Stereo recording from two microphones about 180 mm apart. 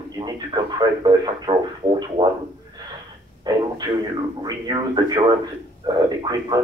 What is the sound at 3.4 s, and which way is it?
A man's voice, 20° right (ahead or behind).